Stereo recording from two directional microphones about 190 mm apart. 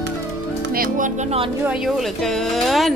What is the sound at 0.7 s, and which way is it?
Speech, 45° right (ahead or behind).